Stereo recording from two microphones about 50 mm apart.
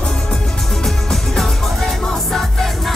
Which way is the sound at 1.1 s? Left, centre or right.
Centre.